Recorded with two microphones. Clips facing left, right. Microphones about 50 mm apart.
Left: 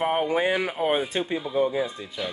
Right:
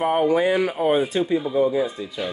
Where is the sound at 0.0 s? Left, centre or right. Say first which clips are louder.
Right 4 dB; centre.